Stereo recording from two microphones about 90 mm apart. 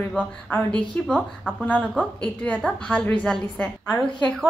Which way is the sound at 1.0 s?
15° left (ahead or behind).